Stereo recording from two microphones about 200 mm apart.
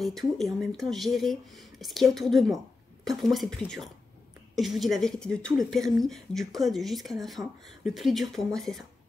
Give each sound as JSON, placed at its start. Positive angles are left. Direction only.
{"t": 0.0, "sound": "speech", "side_deg": 0}